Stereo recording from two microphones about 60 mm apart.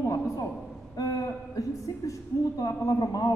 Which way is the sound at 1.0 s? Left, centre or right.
Left.